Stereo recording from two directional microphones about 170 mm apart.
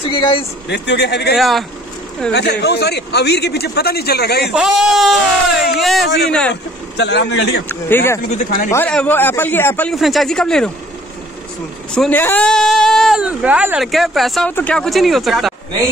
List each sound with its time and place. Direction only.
0.0 s speech: 30° left (ahead or behind)
0.7 s speech: 90° left
1.3 s speech: centre (ahead or behind)
2.3 s a man's voice: 75° left (ahead or behind)
4.5 s speech: 5° right (ahead or behind)
6.5 s speech: 90° left
7.6 s a man's voice: 15° left (ahead or behind)
8.3 s speech: 45° left (ahead or behind)
8.7 s a man's voice: 10° left (ahead or behind)
9.9 s speech: centre (ahead or behind)
11.9 s speech: 5° left (ahead or behind)